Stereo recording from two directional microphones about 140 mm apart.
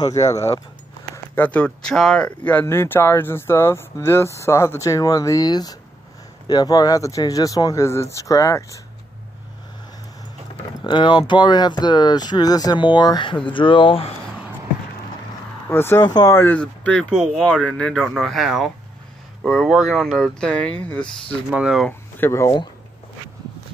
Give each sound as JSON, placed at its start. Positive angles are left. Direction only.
{"t": 0.2, "sound": "speech", "side_deg": 25}
{"t": 1.1, "sound": "speech", "side_deg": 15}
{"t": 10.8, "sound": "speech", "side_deg": 35}
{"t": 15.7, "sound": "speech", "side_deg": 15}
{"t": 16.1, "sound": "speech", "side_deg": 30}
{"t": 16.3, "sound": "speech", "side_deg": 10}
{"t": 21.5, "sound": "speech", "side_deg": -5}
{"t": 21.8, "sound": "speech", "side_deg": 15}